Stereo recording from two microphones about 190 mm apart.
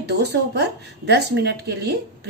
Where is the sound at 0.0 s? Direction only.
65° right (ahead or behind).